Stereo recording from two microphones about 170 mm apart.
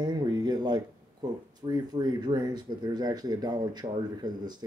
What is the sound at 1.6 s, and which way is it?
Speech, 25° right (ahead or behind).